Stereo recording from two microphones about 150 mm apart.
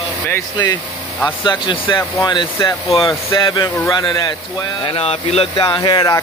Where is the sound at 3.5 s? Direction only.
25° left (ahead or behind).